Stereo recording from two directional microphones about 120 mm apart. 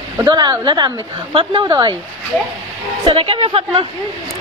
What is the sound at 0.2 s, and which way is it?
A woman's voice, 35° right (ahead or behind).